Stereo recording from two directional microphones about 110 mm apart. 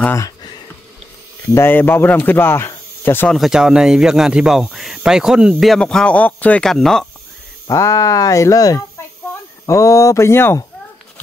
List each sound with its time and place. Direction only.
1.5 s speech: 20° left (ahead or behind)
3.3 s speech: centre (ahead or behind)
6.7 s speech: 5° left (ahead or behind)
7.6 s speech: 30° left (ahead or behind)